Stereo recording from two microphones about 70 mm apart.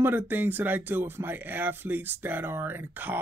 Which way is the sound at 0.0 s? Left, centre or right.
Right.